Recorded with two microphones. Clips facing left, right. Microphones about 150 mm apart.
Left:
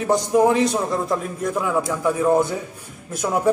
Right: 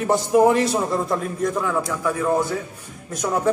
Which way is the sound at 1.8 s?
20° left (ahead or behind).